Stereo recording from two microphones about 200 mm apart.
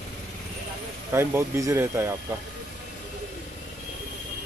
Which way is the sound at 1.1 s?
10° right (ahead or behind).